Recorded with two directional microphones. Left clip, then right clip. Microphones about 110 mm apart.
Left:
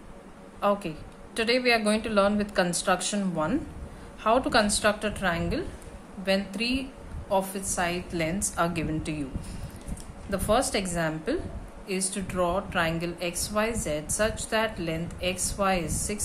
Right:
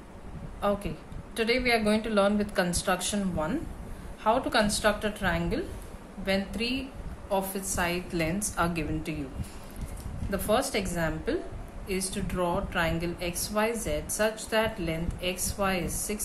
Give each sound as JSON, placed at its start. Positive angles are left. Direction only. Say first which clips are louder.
{"t": 0.6, "sound": "a woman's voice", "louder": "left 3 dB", "side_deg": 45}
{"t": 7.2, "sound": "a woman's voice", "louder": "left 3 dB", "side_deg": 20}
{"t": 7.8, "sound": "a woman's voice", "louder": "left 1 dB", "side_deg": 0}
{"t": 8.4, "sound": "a woman's voice", "louder": "left 2 dB", "side_deg": 20}
{"t": 10.3, "sound": "a woman's voice", "louder": "left 2 dB", "side_deg": 35}